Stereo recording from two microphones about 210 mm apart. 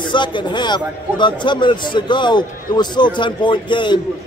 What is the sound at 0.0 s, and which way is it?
A man's voice, 20° left (ahead or behind).